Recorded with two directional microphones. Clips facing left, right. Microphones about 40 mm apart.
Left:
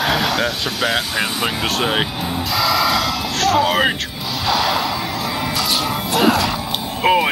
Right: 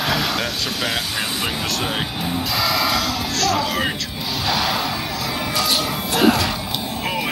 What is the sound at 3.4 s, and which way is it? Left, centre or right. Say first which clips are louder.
Speech: left 6 dB; left.